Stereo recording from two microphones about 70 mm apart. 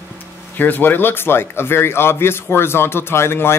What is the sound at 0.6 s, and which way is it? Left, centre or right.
A man's voice, left.